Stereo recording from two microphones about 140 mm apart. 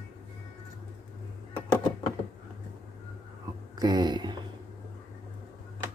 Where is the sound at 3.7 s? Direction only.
30° right (ahead or behind).